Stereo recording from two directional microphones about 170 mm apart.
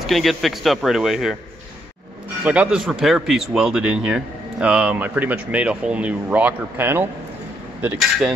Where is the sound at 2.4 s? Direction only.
5° right (ahead or behind).